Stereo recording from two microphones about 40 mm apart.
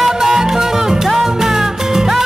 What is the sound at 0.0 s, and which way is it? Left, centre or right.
Music, centre.